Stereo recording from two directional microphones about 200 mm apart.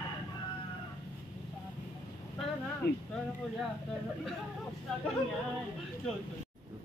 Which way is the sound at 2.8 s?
55° left (ahead or behind).